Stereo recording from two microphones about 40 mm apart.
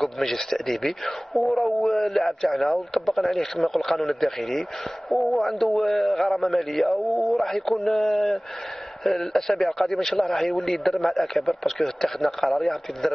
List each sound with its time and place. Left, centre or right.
0.0 s a man's voice: centre